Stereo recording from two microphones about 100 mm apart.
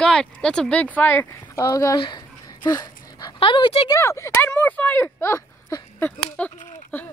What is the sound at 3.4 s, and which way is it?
Speech, 60° left (ahead or behind).